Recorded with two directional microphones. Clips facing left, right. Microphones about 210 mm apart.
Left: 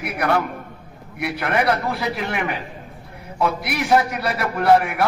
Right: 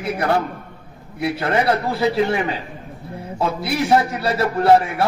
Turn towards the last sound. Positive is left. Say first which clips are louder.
# right 2 dB
turn(degrees=-25)  # may be behind; listen again after turning